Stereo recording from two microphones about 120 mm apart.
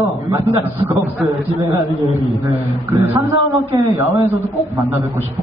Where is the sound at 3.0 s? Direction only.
25° right (ahead or behind).